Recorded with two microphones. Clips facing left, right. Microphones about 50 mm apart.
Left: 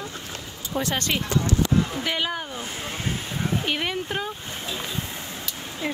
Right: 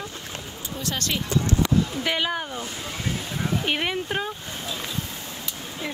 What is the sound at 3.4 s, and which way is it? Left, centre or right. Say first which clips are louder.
Speech: right 1 dB; centre.